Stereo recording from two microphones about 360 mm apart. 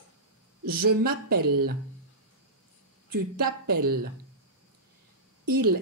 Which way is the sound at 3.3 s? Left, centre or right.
Right.